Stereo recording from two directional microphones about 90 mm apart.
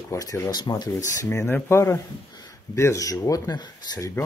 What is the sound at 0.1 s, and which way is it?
Speech, 35° left (ahead or behind).